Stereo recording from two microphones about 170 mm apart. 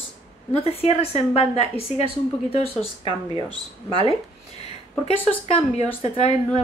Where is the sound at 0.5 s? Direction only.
35° left (ahead or behind).